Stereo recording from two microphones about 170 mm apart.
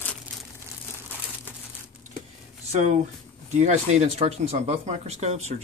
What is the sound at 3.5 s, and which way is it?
Speech, 45° right (ahead or behind).